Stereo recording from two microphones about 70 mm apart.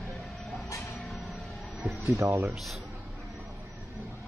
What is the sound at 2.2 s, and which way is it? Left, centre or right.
Speech, right.